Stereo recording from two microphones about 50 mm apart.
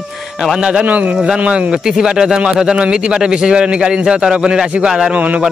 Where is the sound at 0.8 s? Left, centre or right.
Right.